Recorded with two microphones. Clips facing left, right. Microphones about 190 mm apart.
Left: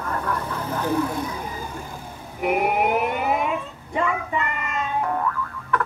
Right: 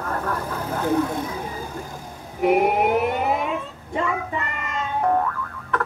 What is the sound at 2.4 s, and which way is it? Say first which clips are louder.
Speech: right 3 dB; 35° right (ahead or behind).